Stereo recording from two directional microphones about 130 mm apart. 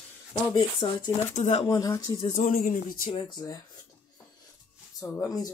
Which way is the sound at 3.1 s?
35° left (ahead or behind).